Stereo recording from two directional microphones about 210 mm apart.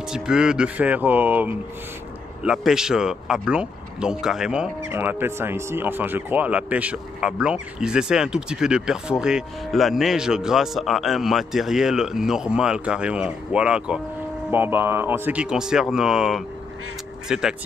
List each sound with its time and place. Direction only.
0.1 s speech: 5° right (ahead or behind)